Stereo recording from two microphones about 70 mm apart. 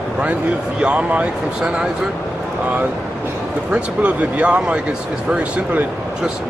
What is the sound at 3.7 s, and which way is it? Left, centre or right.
Speech, centre.